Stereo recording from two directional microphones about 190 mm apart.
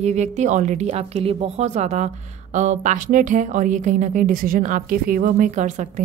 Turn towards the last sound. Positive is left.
turn(degrees=-40)  # may be behind; listen again after turning